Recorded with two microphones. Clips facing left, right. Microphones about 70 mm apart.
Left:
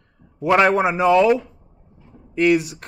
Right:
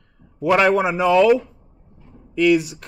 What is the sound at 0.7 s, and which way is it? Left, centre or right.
Speech, left.